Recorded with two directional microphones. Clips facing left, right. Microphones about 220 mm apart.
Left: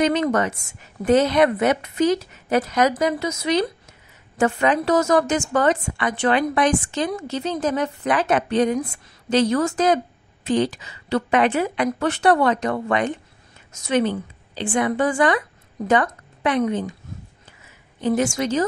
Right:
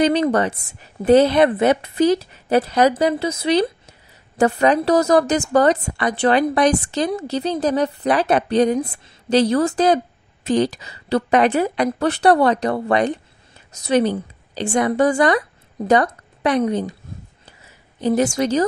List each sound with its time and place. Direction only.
0.0 s a woman's voice: 35° right (ahead or behind)
18.0 s a woman's voice: 35° right (ahead or behind)